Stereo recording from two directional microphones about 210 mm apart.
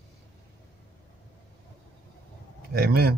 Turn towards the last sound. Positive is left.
turn(degrees=-50)  # may be behind; listen again after turning